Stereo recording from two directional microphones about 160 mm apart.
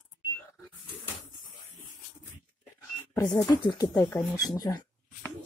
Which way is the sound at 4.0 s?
15° left (ahead or behind).